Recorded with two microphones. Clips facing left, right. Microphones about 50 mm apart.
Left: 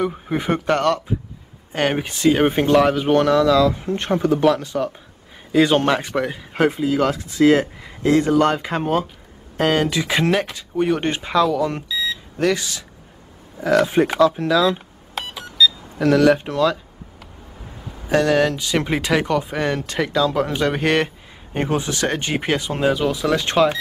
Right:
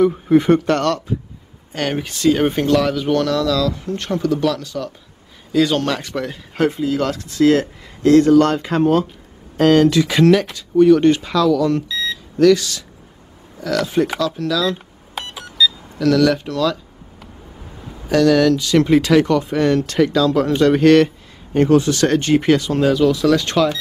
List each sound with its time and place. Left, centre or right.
0.0 s speech: centre
11.9 s beep: centre
12.4 s speech: left
15.1 s a sound: centre
16.0 s speech: left
18.0 s speech: left